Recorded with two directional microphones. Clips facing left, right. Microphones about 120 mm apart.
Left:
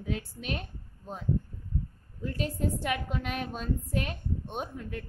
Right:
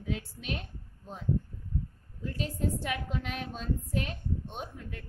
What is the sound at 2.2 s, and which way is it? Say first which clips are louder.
A woman's voice: left 2 dB; 55° left (ahead or behind).